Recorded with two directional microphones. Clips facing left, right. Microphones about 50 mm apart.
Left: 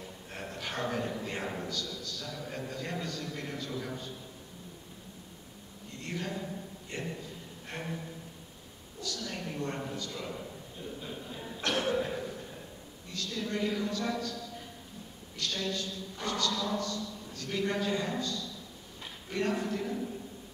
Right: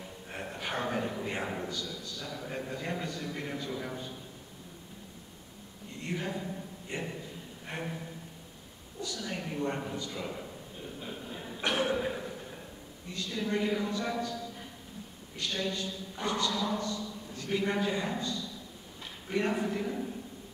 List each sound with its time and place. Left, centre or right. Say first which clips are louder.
0.3 s a man's voice: right 3 dB; centre
6.0 s a man's voice: right 2 dB; centre
7.7 s a sound: right 2 dB; centre
9.0 s a man's voice: right 1 dB; centre
11.6 s cough: right 1 dB; centre
13.1 s a man's voice: right 2 dB; centre
15.3 s a man's voice: right 1 dB; centre